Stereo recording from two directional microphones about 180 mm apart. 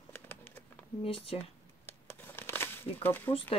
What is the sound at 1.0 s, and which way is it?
Speech, 30° left (ahead or behind).